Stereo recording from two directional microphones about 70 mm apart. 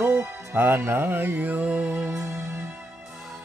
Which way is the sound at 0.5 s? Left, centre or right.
Right.